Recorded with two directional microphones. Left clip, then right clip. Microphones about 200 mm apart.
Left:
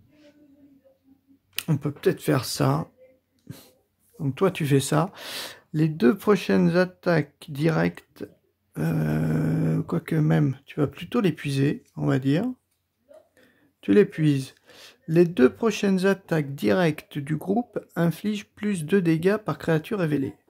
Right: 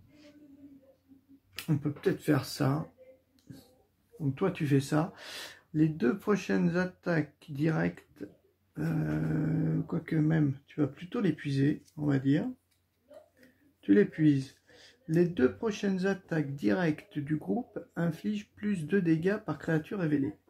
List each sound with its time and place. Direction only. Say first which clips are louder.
1.5 s speech: left 5 dB; 50° left (ahead or behind)
3.5 s a sound: left 7 dB; 45° left (ahead or behind)
4.2 s speech: left 8 dB; 50° left (ahead or behind)
13.7 s speech: left 6 dB; 50° left (ahead or behind)